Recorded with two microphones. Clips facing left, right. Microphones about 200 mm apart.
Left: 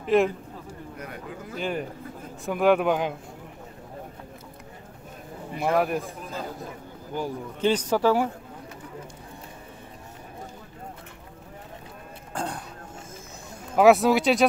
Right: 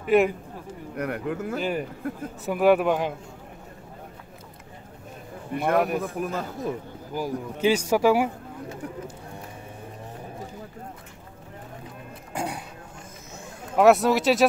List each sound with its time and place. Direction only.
0.0 s a man's voice: 5° right (ahead or behind)
0.9 s speech: 65° right (ahead or behind)
1.6 s speech: 5° right (ahead or behind)
5.6 s speech: centre (ahead or behind)
6.1 s speech: 65° right (ahead or behind)
7.2 s speech: 10° right (ahead or behind)
12.4 s a sound: 10° right (ahead or behind)
13.7 s speech: centre (ahead or behind)